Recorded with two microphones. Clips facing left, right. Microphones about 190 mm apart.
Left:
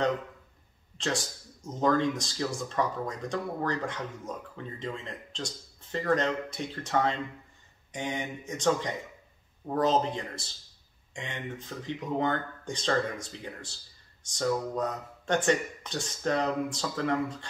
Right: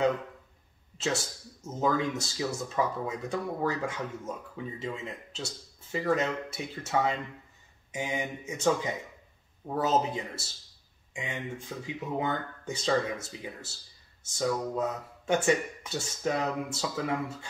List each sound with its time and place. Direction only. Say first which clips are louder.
0.9 s speech: right 1 dB; 5° right (ahead or behind)